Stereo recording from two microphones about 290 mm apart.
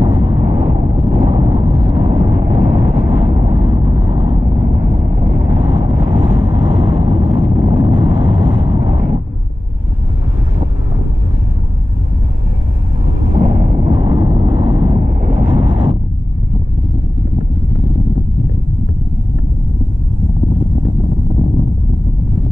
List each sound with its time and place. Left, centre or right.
0.0 s vehicle: centre
13.4 s vehicle: right